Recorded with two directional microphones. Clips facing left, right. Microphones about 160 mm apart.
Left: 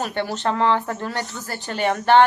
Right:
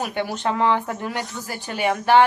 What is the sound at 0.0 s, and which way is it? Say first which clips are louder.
A woman's voice: left 1 dB; 10° right (ahead or behind).